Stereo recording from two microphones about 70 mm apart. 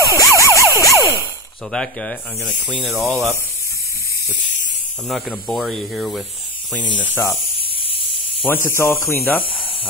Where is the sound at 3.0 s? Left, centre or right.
Centre.